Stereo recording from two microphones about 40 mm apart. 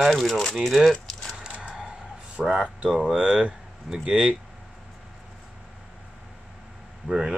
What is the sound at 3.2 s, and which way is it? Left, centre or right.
Speech, right.